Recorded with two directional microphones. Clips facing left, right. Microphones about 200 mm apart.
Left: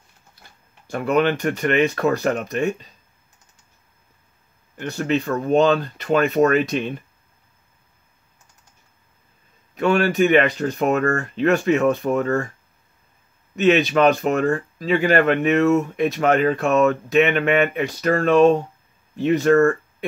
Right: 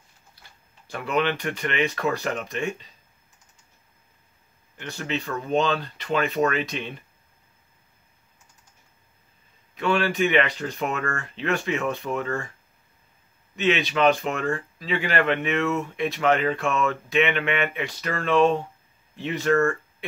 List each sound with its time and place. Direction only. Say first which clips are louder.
0.8 s speech: left 6 dB; 45° left (ahead or behind)
4.7 s speech: left 8 dB; 45° left (ahead or behind)
9.8 s speech: left 5 dB; 45° left (ahead or behind)
13.6 s speech: left 6 dB; 45° left (ahead or behind)